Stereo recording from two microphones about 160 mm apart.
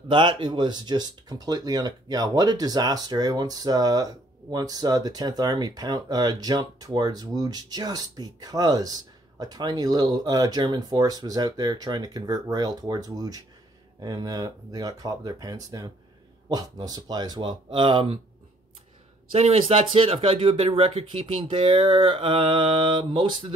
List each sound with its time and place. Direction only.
0.1 s speech: 30° right (ahead or behind)
19.3 s speech: 40° right (ahead or behind)